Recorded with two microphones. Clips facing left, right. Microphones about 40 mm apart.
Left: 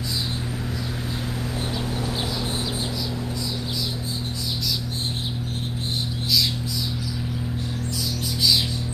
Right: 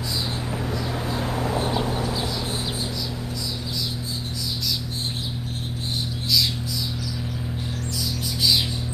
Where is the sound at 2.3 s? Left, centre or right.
Centre.